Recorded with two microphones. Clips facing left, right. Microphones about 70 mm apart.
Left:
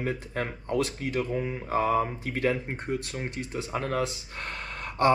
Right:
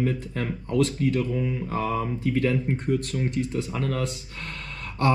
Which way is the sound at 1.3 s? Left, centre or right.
Left.